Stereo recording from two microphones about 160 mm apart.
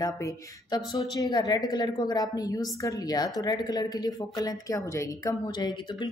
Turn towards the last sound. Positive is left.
turn(degrees=25)  # may be behind; listen again after turning